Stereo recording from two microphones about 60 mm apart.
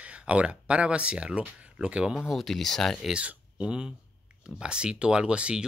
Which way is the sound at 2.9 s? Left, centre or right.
Centre.